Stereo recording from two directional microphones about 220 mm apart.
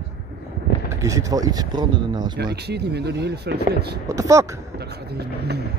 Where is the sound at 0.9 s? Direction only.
15° right (ahead or behind).